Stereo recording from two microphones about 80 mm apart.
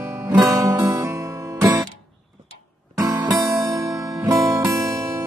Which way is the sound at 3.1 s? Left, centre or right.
Right.